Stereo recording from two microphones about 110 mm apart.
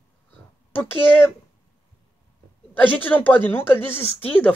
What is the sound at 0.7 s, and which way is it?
Speech, 20° left (ahead or behind).